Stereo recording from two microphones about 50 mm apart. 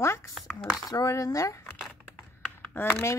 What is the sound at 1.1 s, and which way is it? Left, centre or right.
Speech, left.